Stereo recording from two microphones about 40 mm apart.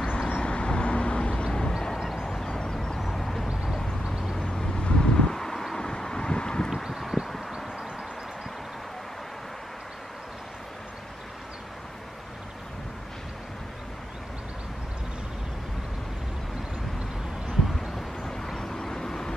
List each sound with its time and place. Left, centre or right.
0.0 s vehicle: left
3.1 s vehicle: centre
4.0 s vehicle: centre
4.8 s wind: left
5.9 s vehicle: centre
6.7 s a sound: centre
18.2 s vehicle: centre